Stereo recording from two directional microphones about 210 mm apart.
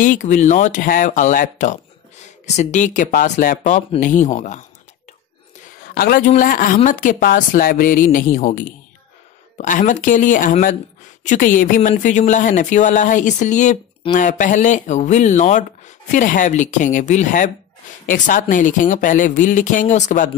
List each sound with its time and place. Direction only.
0.0 s speech: 35° left (ahead or behind)
5.9 s speech: 45° left (ahead or behind)